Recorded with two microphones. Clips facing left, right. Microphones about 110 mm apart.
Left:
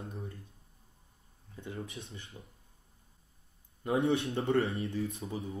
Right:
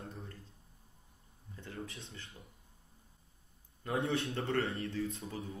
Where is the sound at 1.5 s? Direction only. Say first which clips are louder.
Left 3 dB; 15° left (ahead or behind).